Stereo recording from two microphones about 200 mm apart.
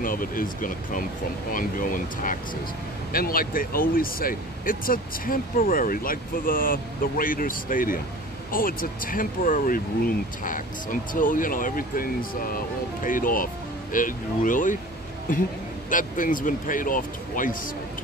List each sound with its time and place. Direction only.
0.0 s speech: 45° left (ahead or behind)
15.9 s speech: 40° left (ahead or behind)